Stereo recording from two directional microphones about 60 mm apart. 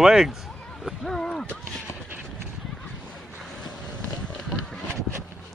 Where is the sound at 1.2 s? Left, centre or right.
Centre.